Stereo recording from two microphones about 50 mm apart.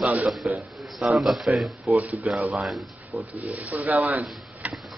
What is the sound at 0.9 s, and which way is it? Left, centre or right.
Speech, centre.